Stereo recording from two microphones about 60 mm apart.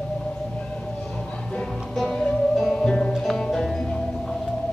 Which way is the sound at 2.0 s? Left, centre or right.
Centre.